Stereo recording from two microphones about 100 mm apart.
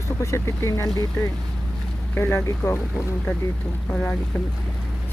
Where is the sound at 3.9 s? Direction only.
5° left (ahead or behind).